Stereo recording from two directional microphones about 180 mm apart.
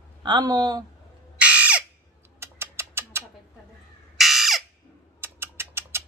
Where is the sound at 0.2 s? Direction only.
25° right (ahead or behind).